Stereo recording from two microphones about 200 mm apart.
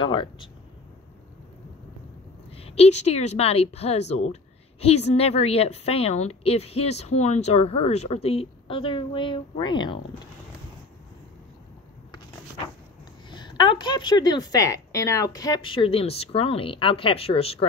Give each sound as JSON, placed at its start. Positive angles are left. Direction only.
{"t": 0.0, "sound": "a woman's voice", "side_deg": 25}
{"t": 2.5, "sound": "speech", "side_deg": 30}
{"t": 13.3, "sound": "a woman's voice", "side_deg": 25}